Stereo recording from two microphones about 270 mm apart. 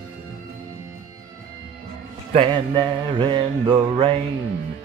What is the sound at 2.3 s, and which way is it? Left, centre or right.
Mantra, centre.